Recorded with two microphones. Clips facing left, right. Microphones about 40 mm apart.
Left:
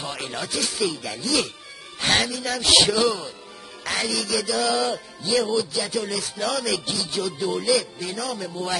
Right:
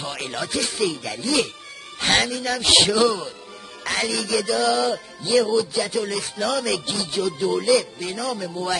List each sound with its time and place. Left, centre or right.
0.0 s speech: centre
2.9 s speech: centre
5.6 s speech: centre